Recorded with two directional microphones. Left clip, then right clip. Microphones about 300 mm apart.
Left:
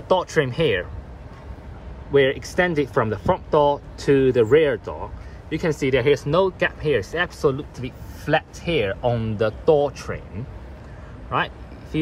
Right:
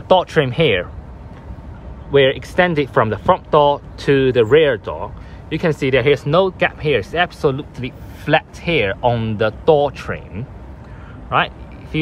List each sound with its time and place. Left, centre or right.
0.1 s speech: centre
2.5 s speech: centre
11.2 s a sound: centre